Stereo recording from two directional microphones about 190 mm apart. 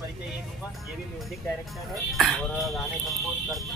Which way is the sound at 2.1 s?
Centre (ahead or behind).